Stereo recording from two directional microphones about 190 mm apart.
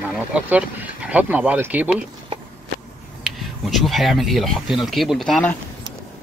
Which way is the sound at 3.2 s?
Centre (ahead or behind).